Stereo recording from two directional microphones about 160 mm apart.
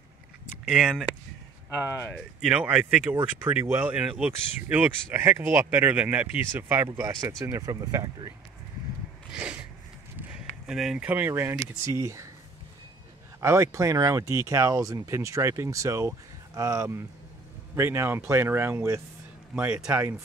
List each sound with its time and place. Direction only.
0.7 s speech: 5° right (ahead or behind)
1.9 s speech: 15° left (ahead or behind)
2.4 s speech: 5° right (ahead or behind); by 8.3 s 25° right (ahead or behind)
9.3 s a sound: 5° right (ahead or behind)
11.6 s speech: 20° right (ahead or behind)
13.4 s speech: 15° right (ahead or behind)